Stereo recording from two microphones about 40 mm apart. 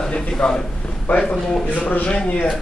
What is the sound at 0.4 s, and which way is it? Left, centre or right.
Speech, left.